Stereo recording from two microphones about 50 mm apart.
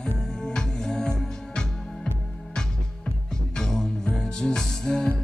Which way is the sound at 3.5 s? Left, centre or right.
Centre.